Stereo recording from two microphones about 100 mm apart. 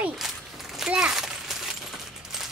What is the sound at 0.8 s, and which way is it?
Speech, 5° right (ahead or behind).